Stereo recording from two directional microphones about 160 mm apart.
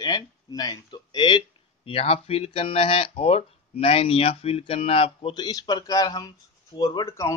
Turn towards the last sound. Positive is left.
turn(degrees=20)  # may be behind; listen again after turning